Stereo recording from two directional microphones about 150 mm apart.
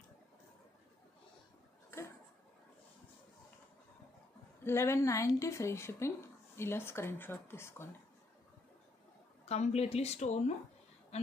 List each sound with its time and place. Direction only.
4.6 s speech: 15° left (ahead or behind)
9.5 s speech: 45° left (ahead or behind)